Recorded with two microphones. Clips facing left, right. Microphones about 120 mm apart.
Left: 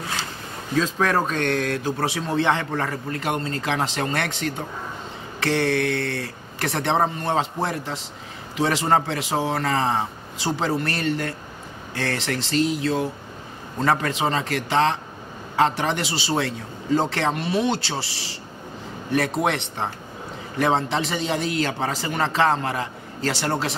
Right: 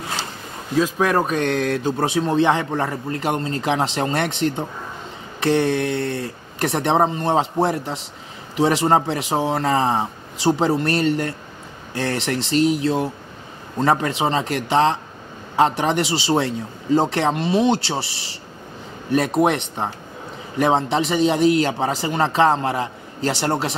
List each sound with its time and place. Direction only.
0.7 s speech: 10° right (ahead or behind)
19.1 s a man's voice: 20° right (ahead or behind)